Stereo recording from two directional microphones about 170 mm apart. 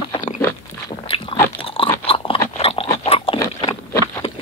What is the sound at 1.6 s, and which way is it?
Chewing, 30° left (ahead or behind).